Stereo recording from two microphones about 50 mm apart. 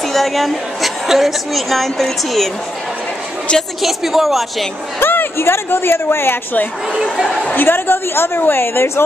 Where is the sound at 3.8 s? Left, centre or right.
Centre.